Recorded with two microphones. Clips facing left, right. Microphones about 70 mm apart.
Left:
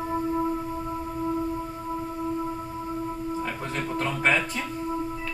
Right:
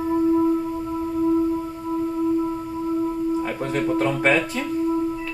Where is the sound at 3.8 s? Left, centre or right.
Centre.